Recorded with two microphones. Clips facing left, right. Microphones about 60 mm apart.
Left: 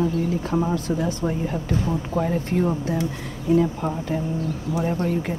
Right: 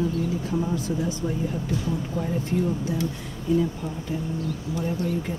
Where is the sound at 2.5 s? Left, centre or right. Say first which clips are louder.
Left 3 dB; left.